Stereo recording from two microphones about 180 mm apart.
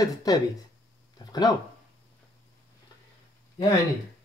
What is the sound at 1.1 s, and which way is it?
Dog, 20° left (ahead or behind).